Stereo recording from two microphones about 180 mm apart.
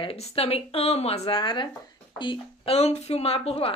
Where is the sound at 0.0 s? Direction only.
35° left (ahead or behind).